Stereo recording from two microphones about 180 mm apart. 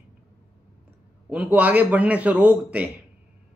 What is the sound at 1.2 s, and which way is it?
A man's voice, 5° right (ahead or behind).